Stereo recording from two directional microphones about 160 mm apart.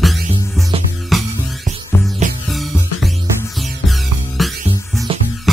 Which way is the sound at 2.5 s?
Centre (ahead or behind).